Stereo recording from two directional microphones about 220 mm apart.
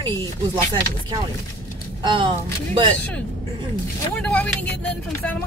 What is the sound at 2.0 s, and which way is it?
Speech, 20° right (ahead or behind).